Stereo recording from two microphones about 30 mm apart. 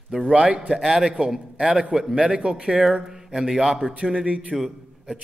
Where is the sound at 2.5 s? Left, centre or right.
Right.